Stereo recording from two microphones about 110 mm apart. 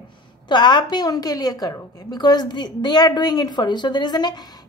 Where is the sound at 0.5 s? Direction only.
45° left (ahead or behind).